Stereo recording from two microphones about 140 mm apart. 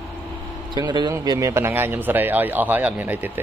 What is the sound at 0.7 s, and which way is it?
Speech, 30° right (ahead or behind).